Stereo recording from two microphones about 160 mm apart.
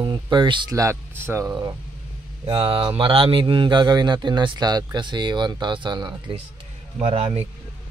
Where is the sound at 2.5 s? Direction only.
35° right (ahead or behind).